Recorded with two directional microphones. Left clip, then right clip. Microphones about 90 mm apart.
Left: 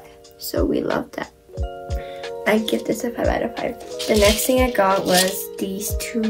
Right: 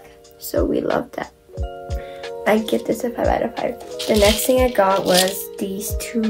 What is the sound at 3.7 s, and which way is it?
Speech, 15° right (ahead or behind).